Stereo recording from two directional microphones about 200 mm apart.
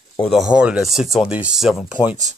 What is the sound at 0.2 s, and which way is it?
Speech, centre (ahead or behind).